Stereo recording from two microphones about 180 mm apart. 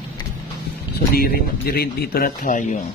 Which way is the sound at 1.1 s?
55° left (ahead or behind).